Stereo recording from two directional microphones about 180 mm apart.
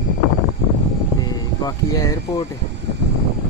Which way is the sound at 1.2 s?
20° left (ahead or behind).